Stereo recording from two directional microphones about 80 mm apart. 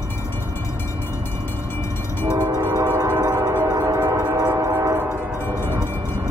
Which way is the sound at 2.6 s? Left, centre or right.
Right.